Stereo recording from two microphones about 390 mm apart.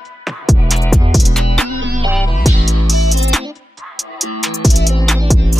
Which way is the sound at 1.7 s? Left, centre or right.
Right.